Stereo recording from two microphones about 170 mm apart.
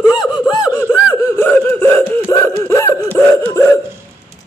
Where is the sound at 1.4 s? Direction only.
10° left (ahead or behind).